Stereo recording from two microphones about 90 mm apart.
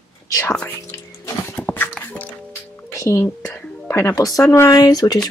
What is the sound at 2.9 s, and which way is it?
Music, 35° left (ahead or behind).